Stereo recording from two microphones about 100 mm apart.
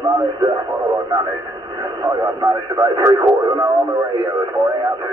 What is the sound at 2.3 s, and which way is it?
Speech, 40° right (ahead or behind).